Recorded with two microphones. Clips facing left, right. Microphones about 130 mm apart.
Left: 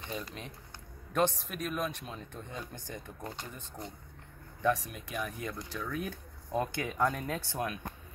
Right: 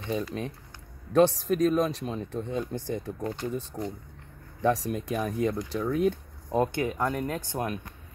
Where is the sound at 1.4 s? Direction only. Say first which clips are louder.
Right 12 dB; 35° right (ahead or behind).